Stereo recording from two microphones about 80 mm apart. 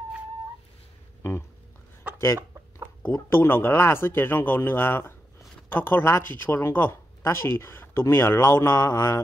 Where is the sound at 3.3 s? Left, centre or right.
Left.